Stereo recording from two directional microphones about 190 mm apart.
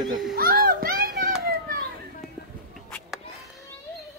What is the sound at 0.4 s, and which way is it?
Children playing, 50° right (ahead or behind).